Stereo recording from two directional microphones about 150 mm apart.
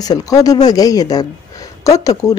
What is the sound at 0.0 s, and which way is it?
Speech, 25° left (ahead or behind).